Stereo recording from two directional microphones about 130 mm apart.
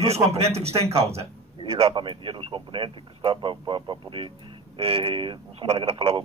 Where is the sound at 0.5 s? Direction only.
50° right (ahead or behind).